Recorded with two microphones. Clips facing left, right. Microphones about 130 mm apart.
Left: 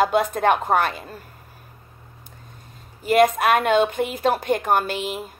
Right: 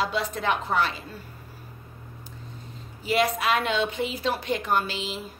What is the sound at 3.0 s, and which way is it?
A woman's voice, 50° left (ahead or behind).